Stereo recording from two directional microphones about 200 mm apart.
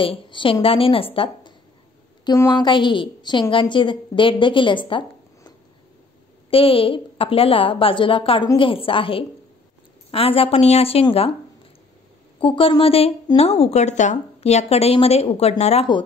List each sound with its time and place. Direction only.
0.0 s a woman's voice: 25° left (ahead or behind)
6.5 s a woman's voice: 25° left (ahead or behind)
12.4 s a woman's voice: 25° left (ahead or behind)